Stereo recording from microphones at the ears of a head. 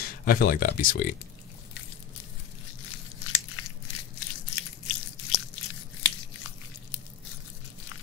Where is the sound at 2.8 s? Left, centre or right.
Left.